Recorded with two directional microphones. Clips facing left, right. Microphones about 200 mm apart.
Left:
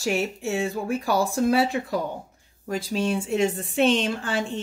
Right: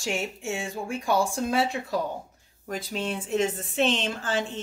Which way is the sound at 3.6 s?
35° left (ahead or behind).